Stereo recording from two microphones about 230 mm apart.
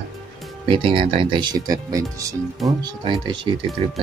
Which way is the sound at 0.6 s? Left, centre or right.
Right.